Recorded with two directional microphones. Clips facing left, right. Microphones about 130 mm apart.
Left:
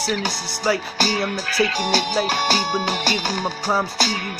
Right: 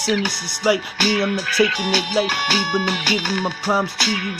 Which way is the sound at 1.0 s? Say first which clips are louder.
Right 3 dB; 40° left (ahead or behind).